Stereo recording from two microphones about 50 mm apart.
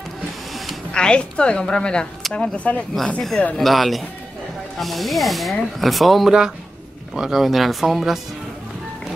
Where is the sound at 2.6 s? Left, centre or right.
Left.